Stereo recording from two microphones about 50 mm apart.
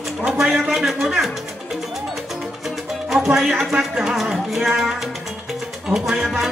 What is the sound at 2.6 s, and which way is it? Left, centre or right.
Music, centre.